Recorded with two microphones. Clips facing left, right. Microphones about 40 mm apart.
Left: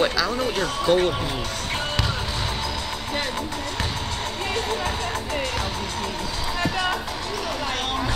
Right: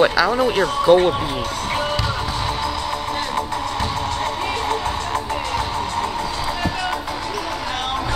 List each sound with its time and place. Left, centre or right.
0.0 s speech: centre